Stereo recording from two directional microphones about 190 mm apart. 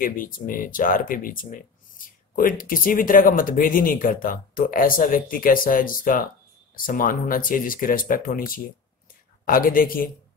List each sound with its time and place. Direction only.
0.0 s speech: 45° left (ahead or behind)